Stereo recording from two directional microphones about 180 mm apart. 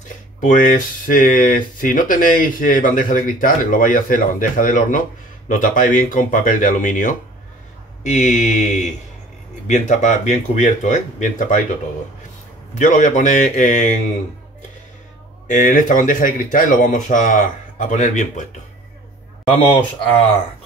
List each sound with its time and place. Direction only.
0.4 s speech: 45° left (ahead or behind)
12.7 s speech: 45° left (ahead or behind)
15.4 s speech: 45° left (ahead or behind)